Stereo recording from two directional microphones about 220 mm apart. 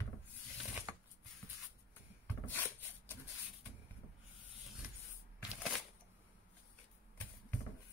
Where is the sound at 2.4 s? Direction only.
10° left (ahead or behind).